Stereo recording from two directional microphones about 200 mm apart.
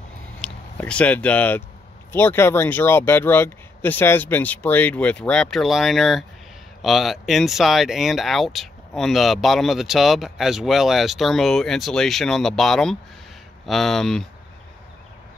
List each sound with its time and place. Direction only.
0.4 s speech: 5° left (ahead or behind)